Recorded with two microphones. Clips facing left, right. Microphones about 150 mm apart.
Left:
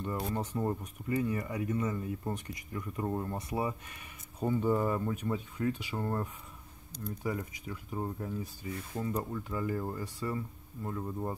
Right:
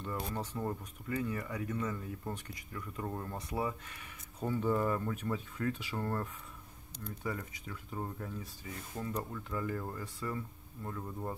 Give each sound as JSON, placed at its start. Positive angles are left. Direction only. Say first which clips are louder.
{"t": 0.0, "sound": "speech", "louder": "left 4 dB", "side_deg": 20}
{"t": 9.8, "sound": "speech", "louder": "left 4 dB", "side_deg": 25}
{"t": 10.3, "sound": "speech", "louder": "left 3 dB", "side_deg": 15}